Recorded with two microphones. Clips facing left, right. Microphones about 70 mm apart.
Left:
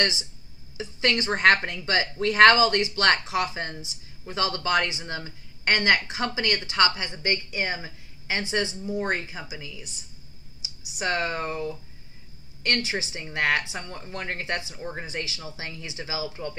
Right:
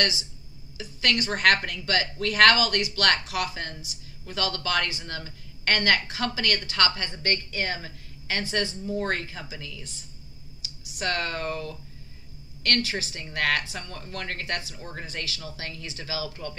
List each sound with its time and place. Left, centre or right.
0.0 s speech: left